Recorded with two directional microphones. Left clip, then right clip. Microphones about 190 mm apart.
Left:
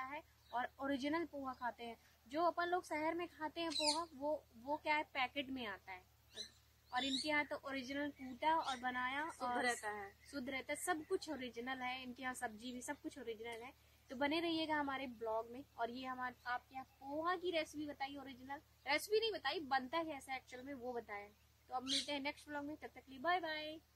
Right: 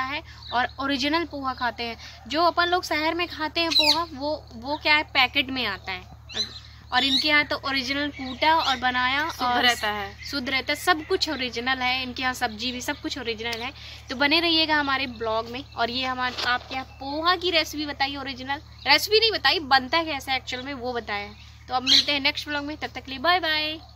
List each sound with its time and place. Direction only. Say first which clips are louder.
0.0 s a woman's voice: right 19 dB; 15° left (ahead or behind)
9.6 s a woman's voice: right 19 dB; centre (ahead or behind)
10.3 s a woman's voice: right 19 dB; 15° left (ahead or behind)